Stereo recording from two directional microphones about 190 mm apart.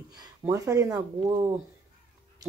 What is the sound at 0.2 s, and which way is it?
Speech, 15° right (ahead or behind).